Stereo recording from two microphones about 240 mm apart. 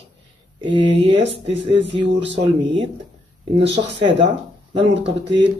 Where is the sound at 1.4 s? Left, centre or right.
Right.